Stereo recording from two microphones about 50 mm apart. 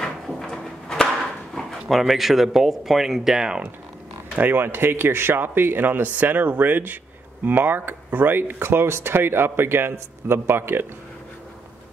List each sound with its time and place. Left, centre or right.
0.3 s a sound: centre
1.9 s speech: centre
4.4 s speech: right